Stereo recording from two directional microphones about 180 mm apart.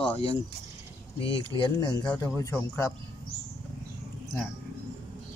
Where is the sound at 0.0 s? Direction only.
30° left (ahead or behind).